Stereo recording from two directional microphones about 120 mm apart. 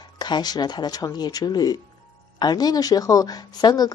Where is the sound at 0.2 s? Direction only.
35° left (ahead or behind).